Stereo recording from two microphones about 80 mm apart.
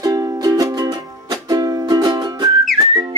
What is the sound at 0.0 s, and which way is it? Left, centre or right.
Music, right.